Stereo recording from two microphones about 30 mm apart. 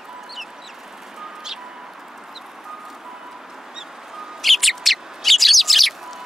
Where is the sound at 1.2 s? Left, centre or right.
Centre.